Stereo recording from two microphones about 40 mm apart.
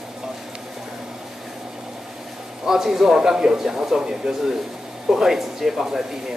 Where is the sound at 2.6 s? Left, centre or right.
Centre.